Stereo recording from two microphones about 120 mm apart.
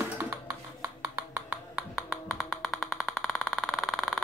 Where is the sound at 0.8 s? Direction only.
25° right (ahead or behind).